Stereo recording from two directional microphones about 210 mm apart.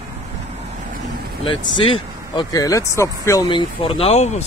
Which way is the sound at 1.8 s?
25° left (ahead or behind).